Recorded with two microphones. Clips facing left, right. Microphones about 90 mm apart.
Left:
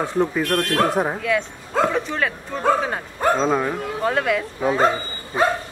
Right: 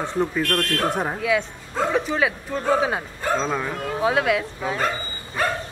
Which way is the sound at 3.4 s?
15° left (ahead or behind).